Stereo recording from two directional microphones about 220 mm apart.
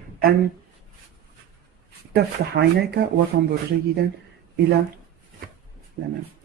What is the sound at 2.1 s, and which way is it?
Speech, 45° right (ahead or behind).